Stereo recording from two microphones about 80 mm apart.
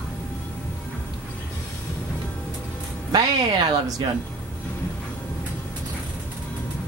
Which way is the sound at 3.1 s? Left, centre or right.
Right.